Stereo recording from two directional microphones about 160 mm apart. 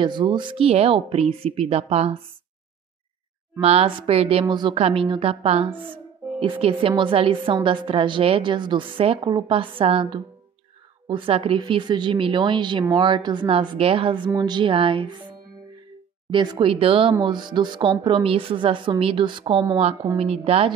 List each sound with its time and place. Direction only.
0.0 s speech: 30° right (ahead or behind)
3.6 s speech: 40° right (ahead or behind)